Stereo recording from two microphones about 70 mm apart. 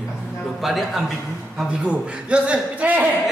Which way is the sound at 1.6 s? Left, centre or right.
Centre.